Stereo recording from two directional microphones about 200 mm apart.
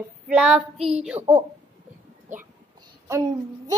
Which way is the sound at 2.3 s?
40° right (ahead or behind).